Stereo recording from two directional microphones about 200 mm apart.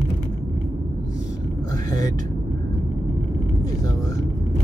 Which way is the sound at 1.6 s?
20° left (ahead or behind).